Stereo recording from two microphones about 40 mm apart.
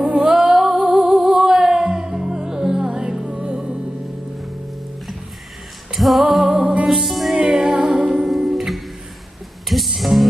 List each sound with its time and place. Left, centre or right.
0.2 s music: centre
0.8 s music: right
2.9 s music: right
5.9 s music: centre
7.3 s music: centre
8.3 s music: centre